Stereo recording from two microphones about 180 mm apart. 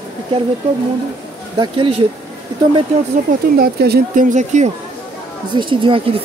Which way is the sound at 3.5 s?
60° right (ahead or behind).